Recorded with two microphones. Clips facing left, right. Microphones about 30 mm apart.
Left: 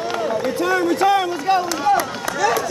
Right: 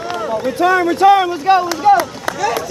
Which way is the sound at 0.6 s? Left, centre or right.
Right.